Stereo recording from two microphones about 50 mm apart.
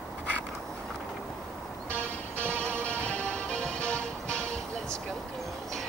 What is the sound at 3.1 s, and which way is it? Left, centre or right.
Music, left.